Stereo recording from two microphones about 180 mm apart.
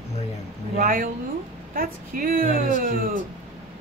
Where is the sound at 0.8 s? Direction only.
50° right (ahead or behind).